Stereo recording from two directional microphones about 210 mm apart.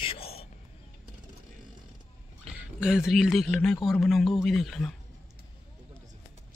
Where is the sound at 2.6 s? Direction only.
5° right (ahead or behind).